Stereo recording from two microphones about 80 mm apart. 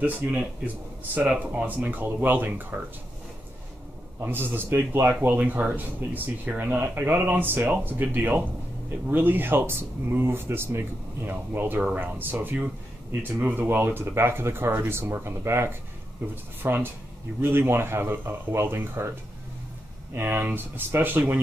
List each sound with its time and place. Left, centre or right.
0.0 s speech: right
4.2 s speech: right
20.2 s speech: right